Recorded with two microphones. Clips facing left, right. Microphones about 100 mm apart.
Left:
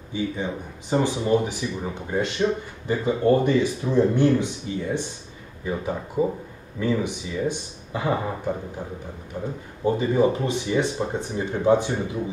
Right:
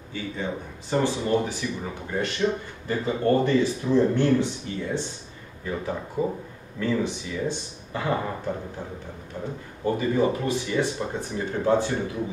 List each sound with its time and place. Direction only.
0.1 s speech: 15° left (ahead or behind)
9.8 s speech: 15° left (ahead or behind)